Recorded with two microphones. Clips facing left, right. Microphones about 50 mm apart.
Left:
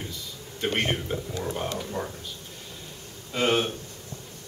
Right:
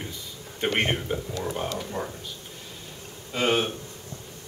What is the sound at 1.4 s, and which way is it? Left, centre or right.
Speech, centre.